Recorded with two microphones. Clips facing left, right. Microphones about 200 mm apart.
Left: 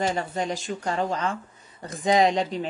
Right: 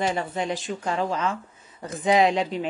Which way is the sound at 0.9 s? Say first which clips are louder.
Right 1 dB; centre (ahead or behind).